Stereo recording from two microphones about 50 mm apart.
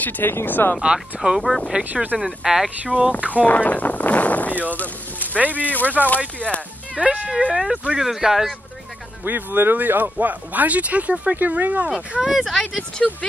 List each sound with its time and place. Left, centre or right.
0.0 s speech: left
0.7 s speech: centre
2.1 s speech: centre
2.9 s speech: right
3.3 s speech: left
4.7 s a sound: left
5.4 s speech: right
5.7 s speech: left
7.0 s speech: right
8.0 s speech: centre
9.2 s speech: right
12.2 s speech: centre
13.0 s speech: centre